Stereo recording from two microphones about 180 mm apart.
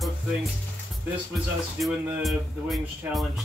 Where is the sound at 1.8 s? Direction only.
Centre (ahead or behind).